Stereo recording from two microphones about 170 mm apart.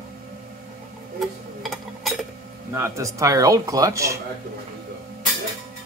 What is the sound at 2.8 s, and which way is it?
Speech, 15° right (ahead or behind).